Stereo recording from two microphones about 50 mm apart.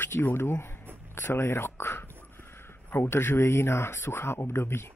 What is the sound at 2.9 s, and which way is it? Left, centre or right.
Speech, left.